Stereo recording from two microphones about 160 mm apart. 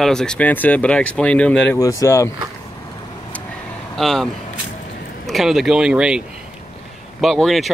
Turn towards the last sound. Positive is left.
turn(degrees=0)  # may be behind; listen again after turning